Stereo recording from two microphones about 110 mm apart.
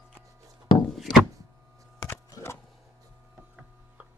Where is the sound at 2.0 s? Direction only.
25° left (ahead or behind).